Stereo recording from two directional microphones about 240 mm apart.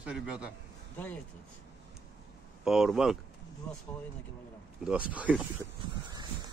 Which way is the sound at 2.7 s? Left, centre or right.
Centre.